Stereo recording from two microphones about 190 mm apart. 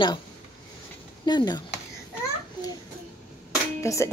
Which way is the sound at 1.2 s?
20° left (ahead or behind).